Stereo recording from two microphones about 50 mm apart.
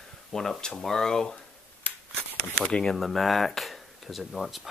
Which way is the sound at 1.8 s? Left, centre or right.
Left.